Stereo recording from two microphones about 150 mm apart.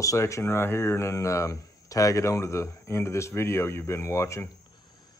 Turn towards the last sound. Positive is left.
turn(degrees=20)  # may be behind; listen again after turning